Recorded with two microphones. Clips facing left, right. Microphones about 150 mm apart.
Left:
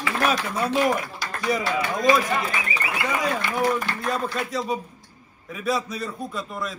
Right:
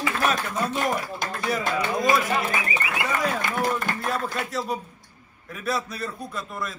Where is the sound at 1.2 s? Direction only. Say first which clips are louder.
Right 2 dB; 50° right (ahead or behind).